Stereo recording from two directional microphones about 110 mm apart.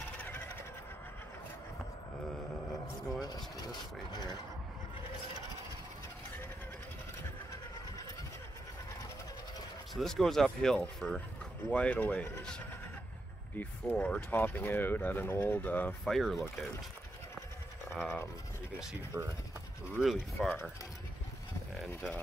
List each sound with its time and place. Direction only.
0.2 s a sound: 15° left (ahead or behind)
3.1 s vehicle: 35° left (ahead or behind)
9.9 s speech: 5° left (ahead or behind)
16.0 s speech: centre (ahead or behind)
19.1 s speech: 15° right (ahead or behind)
20.0 s speech: 5° right (ahead or behind)
21.7 s speech: centre (ahead or behind)